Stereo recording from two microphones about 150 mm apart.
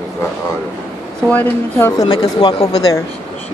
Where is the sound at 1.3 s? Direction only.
10° left (ahead or behind).